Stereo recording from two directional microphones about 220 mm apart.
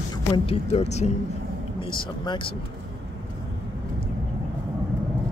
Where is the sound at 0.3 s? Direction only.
30° left (ahead or behind).